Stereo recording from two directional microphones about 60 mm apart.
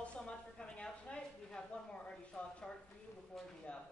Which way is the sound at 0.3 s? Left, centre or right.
Centre.